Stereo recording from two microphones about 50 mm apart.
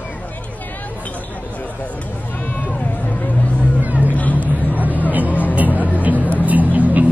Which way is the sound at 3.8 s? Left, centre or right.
Right.